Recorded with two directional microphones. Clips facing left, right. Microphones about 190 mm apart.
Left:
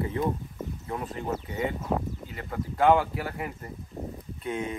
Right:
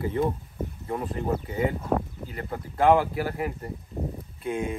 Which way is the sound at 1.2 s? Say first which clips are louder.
Right 3 dB; 30° right (ahead or behind).